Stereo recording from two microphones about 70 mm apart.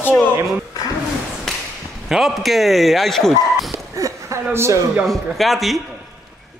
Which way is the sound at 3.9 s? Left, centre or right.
Right.